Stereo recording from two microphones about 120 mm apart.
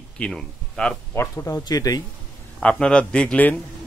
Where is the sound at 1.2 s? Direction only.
25° left (ahead or behind).